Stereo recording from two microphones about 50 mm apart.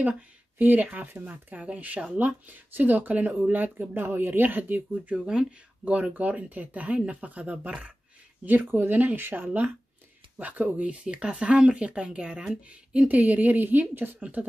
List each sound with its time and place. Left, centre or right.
0.0 s speech: right
5.1 s speech: centre
6.1 s speech: right
8.5 s speech: right
10.3 s speech: right